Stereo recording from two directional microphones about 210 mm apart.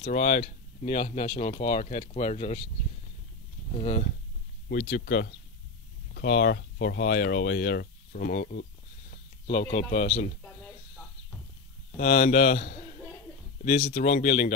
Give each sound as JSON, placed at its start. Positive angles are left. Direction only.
{"t": 0.0, "sound": "speech", "side_deg": 35}
{"t": 3.7, "sound": "speech", "side_deg": 30}
{"t": 4.6, "sound": "speech", "side_deg": 50}
{"t": 6.3, "sound": "speech", "side_deg": 45}
{"t": 9.5, "sound": "speech", "side_deg": 30}
{"t": 12.0, "sound": "speech", "side_deg": 35}